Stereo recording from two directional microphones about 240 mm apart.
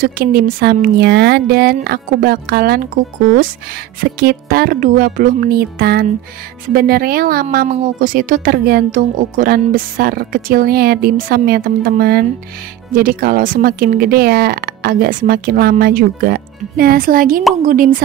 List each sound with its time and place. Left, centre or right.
0.0 s speech: right